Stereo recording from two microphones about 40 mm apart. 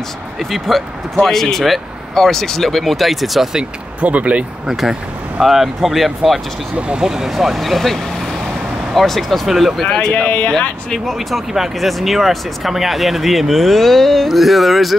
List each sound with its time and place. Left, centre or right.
0.4 s speech: centre
4.0 s speech: right
4.6 s speech: centre
7.0 s speech: centre
7.3 s speech: centre
9.5 s speech: centre
9.8 s speech: centre
10.1 s speech: left
11.1 s speech: centre